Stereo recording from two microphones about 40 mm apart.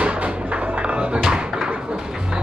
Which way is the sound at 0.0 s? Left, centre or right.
Right.